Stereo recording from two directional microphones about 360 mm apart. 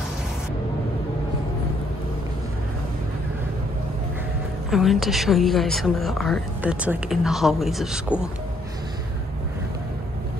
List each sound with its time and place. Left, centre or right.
4.6 s speech: centre